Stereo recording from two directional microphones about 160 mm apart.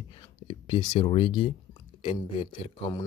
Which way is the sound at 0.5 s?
30° left (ahead or behind).